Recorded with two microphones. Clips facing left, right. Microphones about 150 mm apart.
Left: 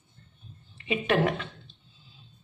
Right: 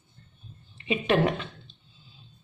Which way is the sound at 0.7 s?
25° right (ahead or behind).